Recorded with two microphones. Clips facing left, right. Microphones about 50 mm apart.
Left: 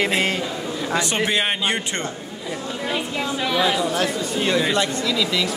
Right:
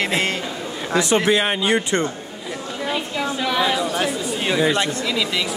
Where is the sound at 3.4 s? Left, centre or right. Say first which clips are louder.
Even; centre.